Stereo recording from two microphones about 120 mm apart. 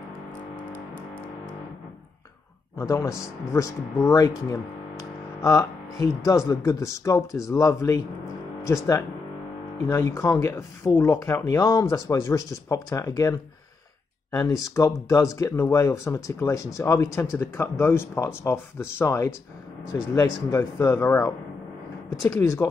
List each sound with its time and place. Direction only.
2.8 s speech: 25° left (ahead or behind)
22.3 s speech: 25° left (ahead or behind)